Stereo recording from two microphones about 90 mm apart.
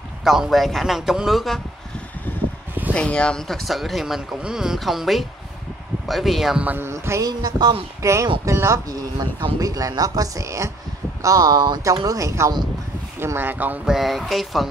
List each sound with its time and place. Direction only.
0.2 s speech: 5° right (ahead or behind)
2.9 s speech: 15° left (ahead or behind); by 6.6 s centre (ahead or behind)
6.6 s speech: 20° right (ahead or behind)
6.9 s speech: 30° right (ahead or behind)
7.2 s speech: 50° right (ahead or behind)
8.0 s speech: 35° right (ahead or behind)
13.2 s speech: 25° right (ahead or behind)
13.8 s speech: centre (ahead or behind)